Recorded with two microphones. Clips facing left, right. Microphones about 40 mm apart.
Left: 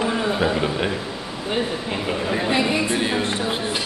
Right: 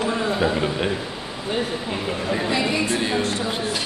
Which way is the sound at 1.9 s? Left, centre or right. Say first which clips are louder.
Left 2 dB; centre.